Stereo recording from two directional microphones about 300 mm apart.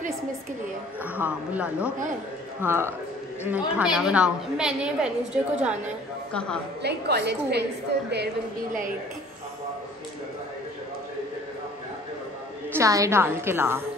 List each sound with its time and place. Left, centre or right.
1.1 s a woman's voice: centre
6.8 s a woman's voice: right
12.7 s a woman's voice: centre